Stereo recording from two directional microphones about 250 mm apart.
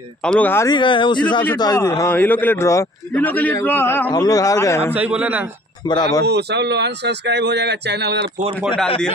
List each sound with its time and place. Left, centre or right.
0.2 s a man's voice: centre
4.9 s a man's voice: centre
5.9 s a man's voice: centre
6.2 s speech: right